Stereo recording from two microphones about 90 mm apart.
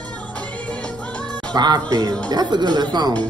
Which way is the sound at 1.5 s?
50° right (ahead or behind).